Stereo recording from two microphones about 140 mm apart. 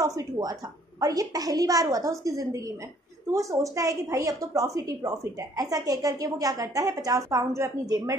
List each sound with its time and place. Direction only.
0.0 s a woman's voice: 25° right (ahead or behind)